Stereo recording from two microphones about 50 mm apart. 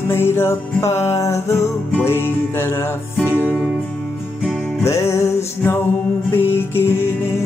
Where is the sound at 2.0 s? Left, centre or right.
Left.